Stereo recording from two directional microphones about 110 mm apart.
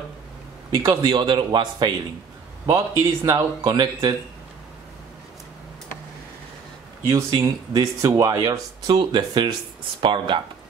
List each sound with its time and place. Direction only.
0.7 s a man's voice: 40° right (ahead or behind)
7.2 s a man's voice: 40° right (ahead or behind)